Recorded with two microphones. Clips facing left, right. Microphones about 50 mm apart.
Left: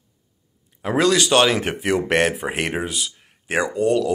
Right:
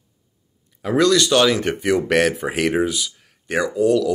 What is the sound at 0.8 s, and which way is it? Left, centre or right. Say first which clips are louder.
Speech: right 2 dB; centre.